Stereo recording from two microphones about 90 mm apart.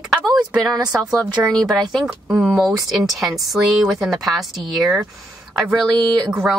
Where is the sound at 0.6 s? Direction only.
40° right (ahead or behind).